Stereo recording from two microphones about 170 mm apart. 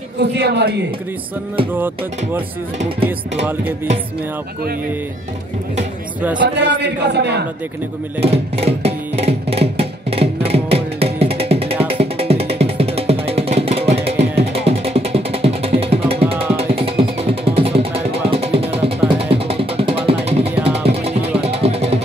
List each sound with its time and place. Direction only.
0.2 s speech: 85° right
6.4 s speech: 90° right
8.2 s music: 35° right (ahead or behind)